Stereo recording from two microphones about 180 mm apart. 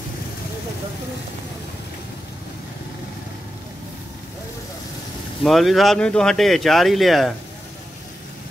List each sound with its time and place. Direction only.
5.4 s speech: centre (ahead or behind)